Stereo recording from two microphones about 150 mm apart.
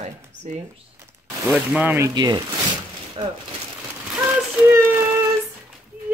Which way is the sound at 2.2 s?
30° right (ahead or behind).